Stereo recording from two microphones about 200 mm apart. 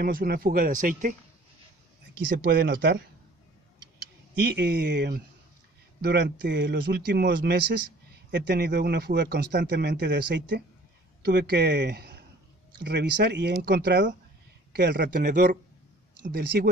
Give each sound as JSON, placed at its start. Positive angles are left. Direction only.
{"t": 0.0, "sound": "speech", "side_deg": -50}
{"t": 2.3, "sound": "speech", "side_deg": -50}
{"t": 4.4, "sound": "a man's voice", "side_deg": -55}
{"t": 15.1, "sound": "speech", "side_deg": -40}